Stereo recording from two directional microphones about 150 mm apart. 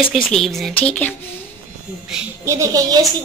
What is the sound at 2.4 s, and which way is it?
Speech, 20° right (ahead or behind).